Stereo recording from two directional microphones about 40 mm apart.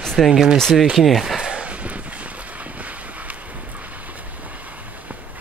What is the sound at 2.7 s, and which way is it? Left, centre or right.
Vehicle, right.